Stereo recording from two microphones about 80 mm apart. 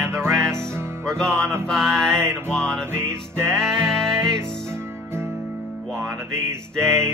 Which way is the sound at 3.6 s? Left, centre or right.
Centre.